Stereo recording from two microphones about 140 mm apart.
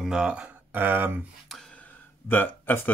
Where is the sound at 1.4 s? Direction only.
5° left (ahead or behind).